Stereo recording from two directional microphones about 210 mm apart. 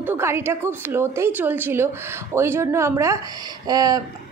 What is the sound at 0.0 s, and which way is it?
A woman's voice, 10° right (ahead or behind).